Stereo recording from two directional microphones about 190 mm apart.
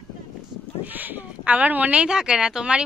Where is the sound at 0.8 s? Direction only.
10° right (ahead or behind).